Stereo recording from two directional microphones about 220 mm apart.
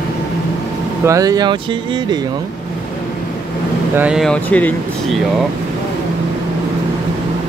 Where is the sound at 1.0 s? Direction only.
15° right (ahead or behind).